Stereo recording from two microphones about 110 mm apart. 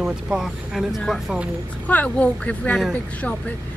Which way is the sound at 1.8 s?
15° left (ahead or behind).